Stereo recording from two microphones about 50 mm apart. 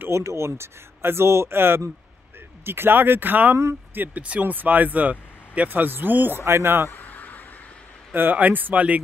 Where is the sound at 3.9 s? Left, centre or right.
Right.